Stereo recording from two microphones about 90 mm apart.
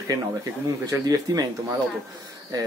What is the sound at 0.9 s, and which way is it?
Speech, 40° right (ahead or behind).